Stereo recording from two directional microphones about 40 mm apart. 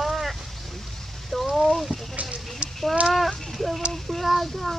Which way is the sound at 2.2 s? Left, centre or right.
Right.